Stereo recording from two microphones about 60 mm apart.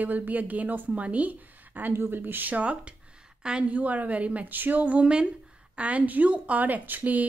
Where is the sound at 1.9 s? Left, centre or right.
Right.